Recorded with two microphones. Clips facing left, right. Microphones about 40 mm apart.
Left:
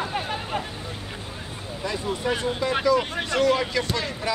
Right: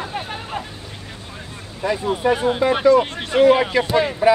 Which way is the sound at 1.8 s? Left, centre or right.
Right.